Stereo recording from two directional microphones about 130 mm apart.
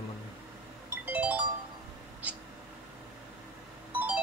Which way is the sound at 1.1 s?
10° right (ahead or behind).